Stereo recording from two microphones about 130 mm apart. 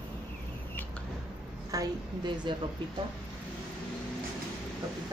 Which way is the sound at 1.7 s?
30° right (ahead or behind).